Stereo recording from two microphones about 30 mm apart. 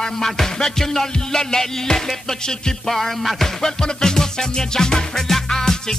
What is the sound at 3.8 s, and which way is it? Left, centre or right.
Music, left.